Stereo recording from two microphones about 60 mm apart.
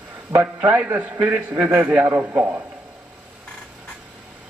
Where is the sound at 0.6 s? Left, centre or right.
Right.